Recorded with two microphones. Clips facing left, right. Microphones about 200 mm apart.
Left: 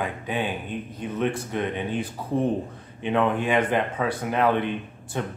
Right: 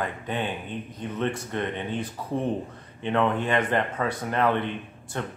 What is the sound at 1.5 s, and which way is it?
A man's voice, 10° left (ahead or behind).